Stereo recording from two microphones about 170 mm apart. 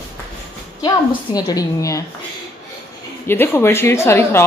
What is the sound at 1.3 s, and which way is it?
Speech, 25° left (ahead or behind).